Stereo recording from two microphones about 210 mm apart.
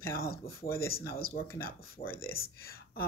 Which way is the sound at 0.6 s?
15° left (ahead or behind).